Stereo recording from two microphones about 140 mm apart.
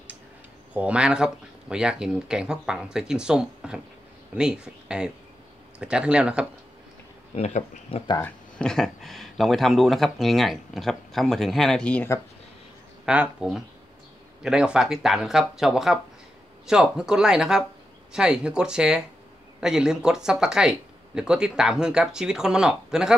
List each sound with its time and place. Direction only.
0.7 s speech: 10° right (ahead or behind)
7.3 s speech: 55° left (ahead or behind)
8.2 s speech: 5° left (ahead or behind)
13.0 s speech: 5° right (ahead or behind)